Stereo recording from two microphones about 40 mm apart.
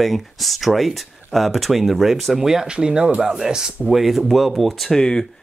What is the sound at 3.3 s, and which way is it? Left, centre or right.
Speech, centre.